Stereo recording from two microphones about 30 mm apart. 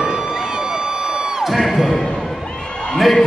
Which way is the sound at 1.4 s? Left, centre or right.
Centre.